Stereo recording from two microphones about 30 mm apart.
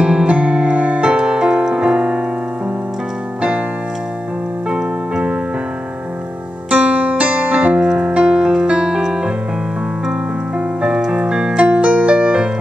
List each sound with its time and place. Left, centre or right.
0.0 s music: right
4.6 s keyboard: right
6.7 s music: right
8.0 s piano: right
8.4 s piano: right
10.8 s music: right